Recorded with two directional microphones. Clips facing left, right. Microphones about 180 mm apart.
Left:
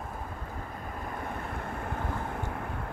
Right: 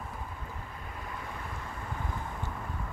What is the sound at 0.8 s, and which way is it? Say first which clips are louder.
Waves: left 5 dB; 50° left (ahead or behind).